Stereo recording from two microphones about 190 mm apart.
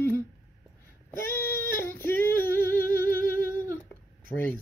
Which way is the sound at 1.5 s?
10° left (ahead or behind).